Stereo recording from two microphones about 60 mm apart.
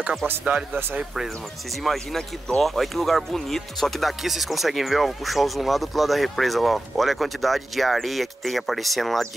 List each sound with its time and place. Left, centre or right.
1.9 s speech: centre